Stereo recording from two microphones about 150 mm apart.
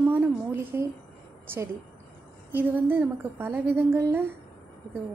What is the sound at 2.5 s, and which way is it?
A woman's voice, 15° right (ahead or behind).